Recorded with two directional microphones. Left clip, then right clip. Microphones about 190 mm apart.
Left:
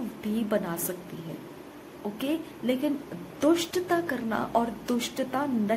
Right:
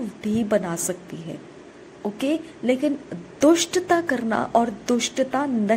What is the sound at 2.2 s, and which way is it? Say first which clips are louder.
A woman's voice: right 6 dB; 20° right (ahead or behind).